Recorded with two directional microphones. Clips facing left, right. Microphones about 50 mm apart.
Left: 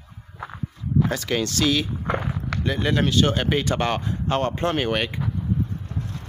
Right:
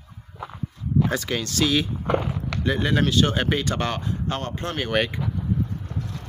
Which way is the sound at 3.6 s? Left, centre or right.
Centre.